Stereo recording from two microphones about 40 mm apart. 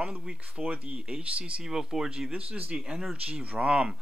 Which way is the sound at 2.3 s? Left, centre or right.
Right.